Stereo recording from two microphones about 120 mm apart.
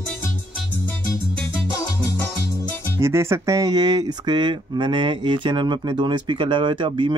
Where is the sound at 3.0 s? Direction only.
25° right (ahead or behind).